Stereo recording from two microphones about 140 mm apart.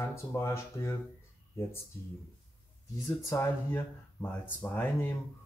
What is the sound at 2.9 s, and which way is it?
Speech, 25° left (ahead or behind).